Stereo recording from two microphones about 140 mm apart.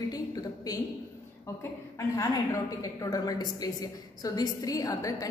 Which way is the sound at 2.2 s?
25° left (ahead or behind).